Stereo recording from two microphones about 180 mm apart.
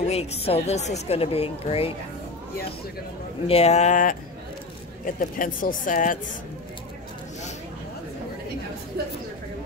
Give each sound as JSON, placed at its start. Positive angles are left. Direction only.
{"t": 0.0, "sound": "speech", "side_deg": 35}
{"t": 3.4, "sound": "speech", "side_deg": 35}